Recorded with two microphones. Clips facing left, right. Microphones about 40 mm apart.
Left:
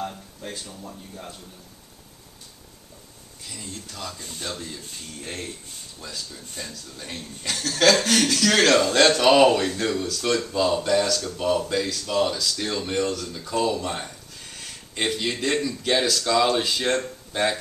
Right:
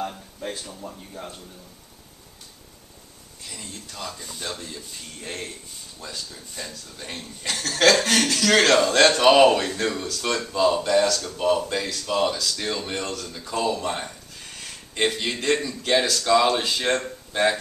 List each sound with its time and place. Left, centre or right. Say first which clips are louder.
0.0 s a sound: right 2 dB; centre
0.7 s speech: right 2 dB; centre
3.6 s speech: even; centre
5.2 s speech: right 1 dB; centre